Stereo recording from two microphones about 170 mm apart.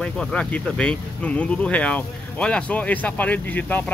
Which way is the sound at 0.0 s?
5° left (ahead or behind).